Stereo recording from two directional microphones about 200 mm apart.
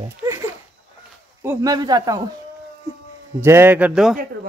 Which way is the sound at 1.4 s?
15° right (ahead or behind).